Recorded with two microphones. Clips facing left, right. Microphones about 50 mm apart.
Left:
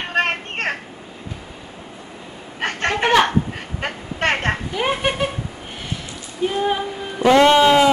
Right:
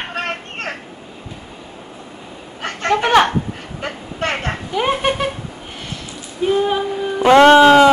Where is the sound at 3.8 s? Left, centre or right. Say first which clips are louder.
Left 1 dB; left.